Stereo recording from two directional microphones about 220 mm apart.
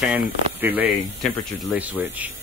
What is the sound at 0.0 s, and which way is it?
Speech, 5° right (ahead or behind).